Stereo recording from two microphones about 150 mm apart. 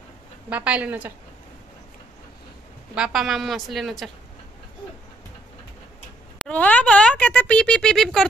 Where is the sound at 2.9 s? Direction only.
5° right (ahead or behind).